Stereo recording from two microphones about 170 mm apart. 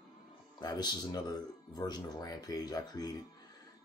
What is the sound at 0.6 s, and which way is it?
Speech, 25° left (ahead or behind).